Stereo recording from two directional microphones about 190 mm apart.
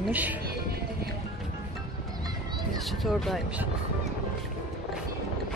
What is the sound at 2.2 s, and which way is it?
Music, 20° right (ahead or behind).